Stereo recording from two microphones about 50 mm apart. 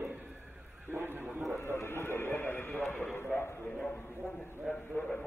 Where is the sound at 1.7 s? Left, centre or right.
Left.